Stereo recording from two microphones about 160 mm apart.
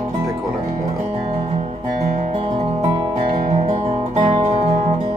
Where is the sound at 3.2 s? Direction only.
30° right (ahead or behind).